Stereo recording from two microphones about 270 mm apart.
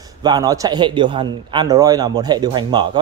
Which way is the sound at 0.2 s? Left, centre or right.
Centre.